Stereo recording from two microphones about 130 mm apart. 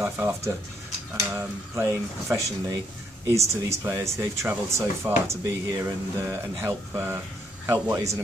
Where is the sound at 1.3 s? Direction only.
20° right (ahead or behind).